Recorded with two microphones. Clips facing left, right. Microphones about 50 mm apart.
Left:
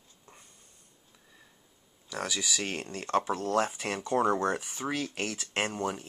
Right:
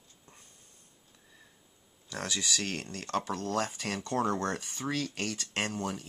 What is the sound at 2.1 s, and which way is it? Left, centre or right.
Speech, centre.